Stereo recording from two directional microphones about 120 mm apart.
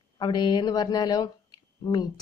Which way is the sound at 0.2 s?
35° left (ahead or behind).